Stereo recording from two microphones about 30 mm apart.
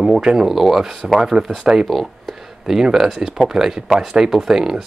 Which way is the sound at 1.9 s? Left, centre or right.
Centre.